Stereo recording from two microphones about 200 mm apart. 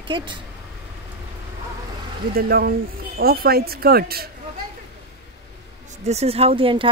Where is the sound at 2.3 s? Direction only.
50° right (ahead or behind).